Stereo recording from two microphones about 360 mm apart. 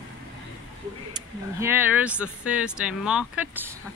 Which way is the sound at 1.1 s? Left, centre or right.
Centre.